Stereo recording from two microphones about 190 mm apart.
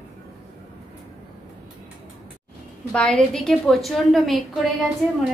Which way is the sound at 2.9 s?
5° left (ahead or behind).